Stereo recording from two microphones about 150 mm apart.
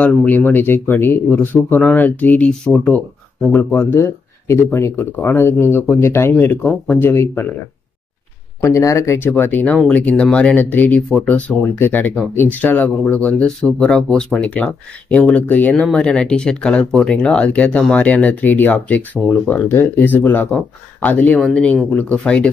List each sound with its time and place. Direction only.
0.0 s speech: 10° left (ahead or behind)
6.6 s speech: centre (ahead or behind)
7.0 s speech: 15° left (ahead or behind)
8.6 s speech: 20° left (ahead or behind)